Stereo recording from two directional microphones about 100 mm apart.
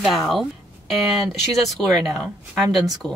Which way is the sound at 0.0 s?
Centre (ahead or behind).